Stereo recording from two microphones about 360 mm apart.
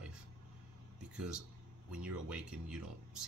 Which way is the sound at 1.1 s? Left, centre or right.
Centre.